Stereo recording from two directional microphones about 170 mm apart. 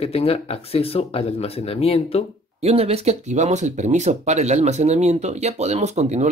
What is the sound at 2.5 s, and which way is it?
Speech, 35° right (ahead or behind).